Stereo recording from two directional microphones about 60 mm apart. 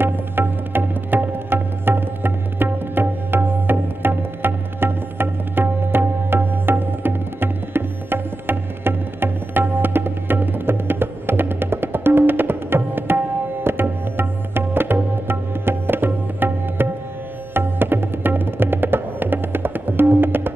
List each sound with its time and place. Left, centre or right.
0.0 s music: right
13.7 s tabla: right
17.6 s music: right